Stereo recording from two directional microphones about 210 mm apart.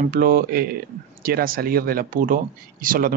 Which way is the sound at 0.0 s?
45° right (ahead or behind).